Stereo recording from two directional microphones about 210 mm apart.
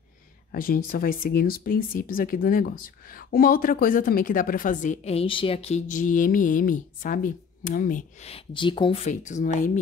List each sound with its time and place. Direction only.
0.5 s speech: 45° left (ahead or behind)